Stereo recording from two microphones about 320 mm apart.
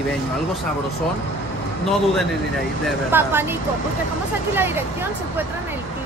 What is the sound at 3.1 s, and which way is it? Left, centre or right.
Speech, centre.